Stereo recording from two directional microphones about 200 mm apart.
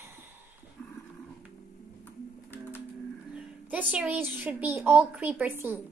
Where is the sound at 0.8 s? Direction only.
10° left (ahead or behind).